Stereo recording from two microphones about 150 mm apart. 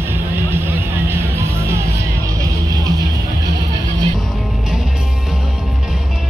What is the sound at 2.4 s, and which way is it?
Music, 25° right (ahead or behind).